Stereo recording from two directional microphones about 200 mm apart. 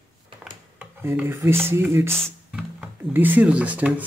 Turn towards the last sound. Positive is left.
turn(degrees=-5)  # may be behind; listen again after turning